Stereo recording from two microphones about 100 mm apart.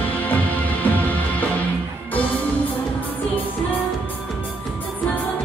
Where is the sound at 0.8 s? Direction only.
20° left (ahead or behind).